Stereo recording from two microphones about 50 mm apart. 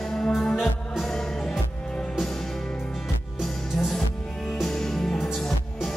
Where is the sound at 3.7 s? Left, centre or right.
Centre.